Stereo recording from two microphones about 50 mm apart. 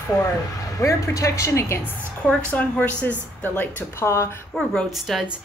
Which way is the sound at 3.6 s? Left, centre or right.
Left.